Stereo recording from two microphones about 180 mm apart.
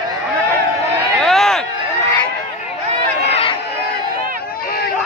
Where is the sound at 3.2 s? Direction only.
35° left (ahead or behind).